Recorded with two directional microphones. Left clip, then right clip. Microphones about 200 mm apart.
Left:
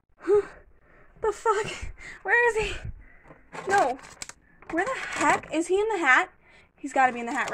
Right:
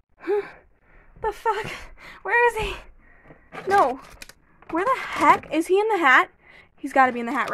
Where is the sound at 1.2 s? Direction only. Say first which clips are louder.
Even; 5° right (ahead or behind).